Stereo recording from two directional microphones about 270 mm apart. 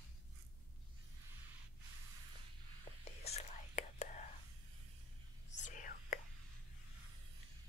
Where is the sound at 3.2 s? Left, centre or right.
Left.